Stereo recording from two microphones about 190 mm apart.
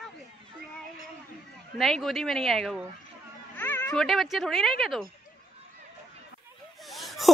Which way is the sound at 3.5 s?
10° left (ahead or behind).